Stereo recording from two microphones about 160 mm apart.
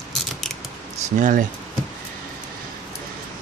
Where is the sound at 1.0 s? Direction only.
50° right (ahead or behind).